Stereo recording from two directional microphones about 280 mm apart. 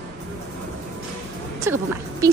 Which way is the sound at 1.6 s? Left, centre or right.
Centre.